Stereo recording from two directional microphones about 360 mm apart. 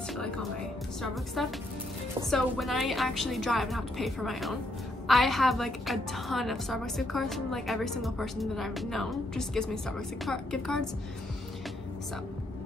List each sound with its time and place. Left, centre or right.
0.1 s music: centre
1.0 s a woman's voice: centre